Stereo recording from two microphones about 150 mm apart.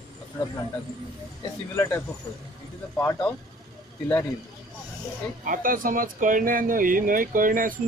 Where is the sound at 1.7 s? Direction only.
15° left (ahead or behind).